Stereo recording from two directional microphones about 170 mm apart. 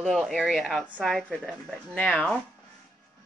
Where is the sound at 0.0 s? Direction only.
Centre (ahead or behind).